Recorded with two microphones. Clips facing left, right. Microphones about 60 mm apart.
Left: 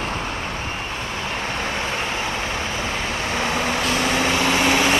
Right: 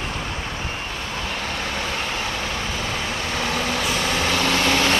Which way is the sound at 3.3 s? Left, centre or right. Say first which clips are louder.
Left 2 dB; left.